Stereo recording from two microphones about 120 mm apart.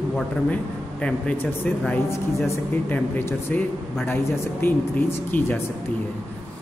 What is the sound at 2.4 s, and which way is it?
Speech, 15° left (ahead or behind).